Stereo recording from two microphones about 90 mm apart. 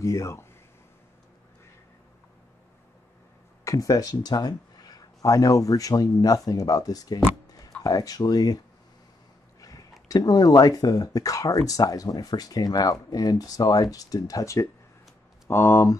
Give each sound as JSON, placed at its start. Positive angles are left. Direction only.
{"t": 0.0, "sound": "speech", "side_deg": 35}
{"t": 3.6, "sound": "speech", "side_deg": 40}
{"t": 15.5, "sound": "speech", "side_deg": 25}